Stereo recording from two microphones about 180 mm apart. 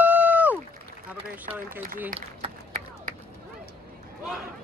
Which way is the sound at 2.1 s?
45° right (ahead or behind).